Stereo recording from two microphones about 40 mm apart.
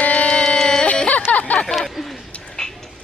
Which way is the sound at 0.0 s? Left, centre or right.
Left.